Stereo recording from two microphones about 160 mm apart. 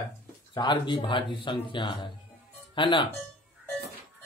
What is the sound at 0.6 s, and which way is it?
Speech, 30° left (ahead or behind).